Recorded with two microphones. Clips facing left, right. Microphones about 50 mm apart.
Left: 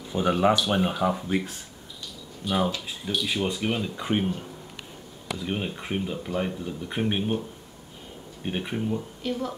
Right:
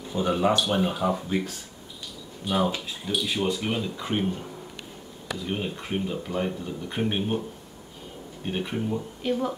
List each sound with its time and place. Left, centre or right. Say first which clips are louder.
0.1 s speech: left 1 dB; centre
2.4 s speech: even; right
3.1 s speech: right 1 dB; centre
3.4 s speech: even; centre
5.5 s speech: even; centre
8.5 s speech: even; centre
9.2 s speech: right 7 dB; centre